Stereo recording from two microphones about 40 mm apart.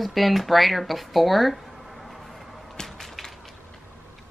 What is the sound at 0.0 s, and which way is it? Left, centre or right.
Speech, centre.